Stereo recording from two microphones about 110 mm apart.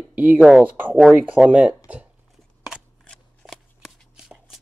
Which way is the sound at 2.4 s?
5° right (ahead or behind).